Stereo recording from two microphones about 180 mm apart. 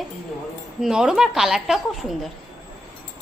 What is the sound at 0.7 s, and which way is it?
A woman's voice, 5° right (ahead or behind).